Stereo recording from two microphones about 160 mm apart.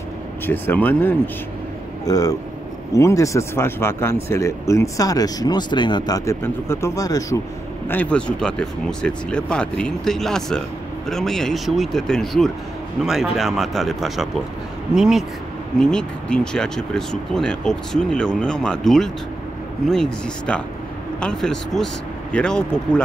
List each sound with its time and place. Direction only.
0.5 s speech: 10° left (ahead or behind)
2.0 s speech: 20° left (ahead or behind)
7.9 s speech: 10° left (ahead or behind)